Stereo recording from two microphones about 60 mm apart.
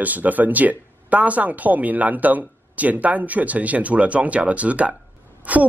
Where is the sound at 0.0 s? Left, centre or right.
Right.